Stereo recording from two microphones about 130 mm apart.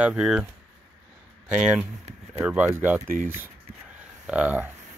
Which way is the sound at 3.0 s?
90° right.